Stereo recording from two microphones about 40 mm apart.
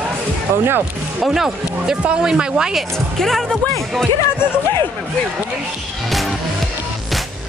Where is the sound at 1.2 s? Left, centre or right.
Centre.